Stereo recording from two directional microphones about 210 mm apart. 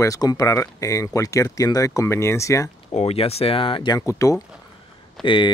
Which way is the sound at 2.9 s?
30° left (ahead or behind).